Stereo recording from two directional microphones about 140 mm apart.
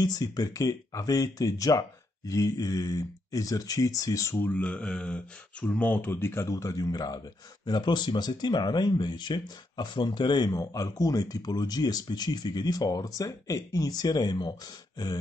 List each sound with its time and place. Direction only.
0.0 s speech: 30° left (ahead or behind)